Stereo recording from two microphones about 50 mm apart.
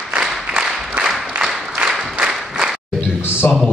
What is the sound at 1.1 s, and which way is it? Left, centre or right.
Applause, centre.